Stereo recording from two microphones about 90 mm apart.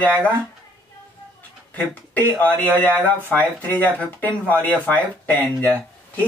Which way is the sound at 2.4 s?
15° left (ahead or behind).